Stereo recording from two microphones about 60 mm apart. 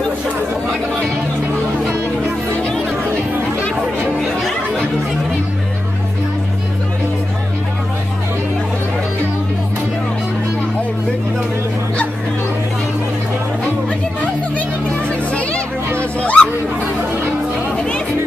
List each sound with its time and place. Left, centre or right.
15.0 s children playing: centre
16.2 s a sound: left
17.7 s music: centre